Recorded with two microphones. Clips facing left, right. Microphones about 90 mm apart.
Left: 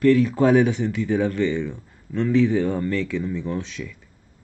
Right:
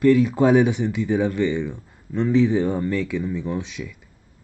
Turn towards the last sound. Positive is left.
turn(degrees=-15)  # may be behind; listen again after turning